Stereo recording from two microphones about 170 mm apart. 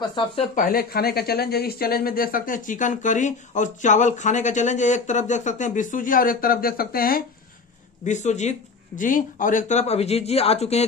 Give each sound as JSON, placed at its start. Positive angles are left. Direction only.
{"t": 0.0, "sound": "speech", "side_deg": 25}
{"t": 0.6, "sound": "speech", "side_deg": 60}
{"t": 8.0, "sound": "speech", "side_deg": 45}